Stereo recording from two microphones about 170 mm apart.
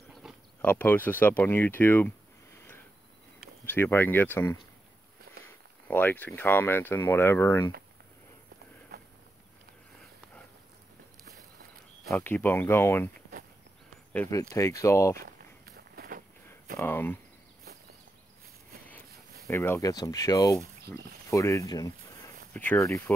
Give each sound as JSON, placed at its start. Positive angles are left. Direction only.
{"t": 0.6, "sound": "speech", "side_deg": 10}
{"t": 12.1, "sound": "speech", "side_deg": 10}
{"t": 14.1, "sound": "speech", "side_deg": 15}
{"t": 15.1, "sound": "walk", "side_deg": -65}
{"t": 16.7, "sound": "speech", "side_deg": 15}
{"t": 19.4, "sound": "speech", "side_deg": 15}